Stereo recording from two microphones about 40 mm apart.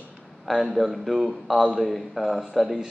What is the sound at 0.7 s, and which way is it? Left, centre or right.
A man's voice, centre.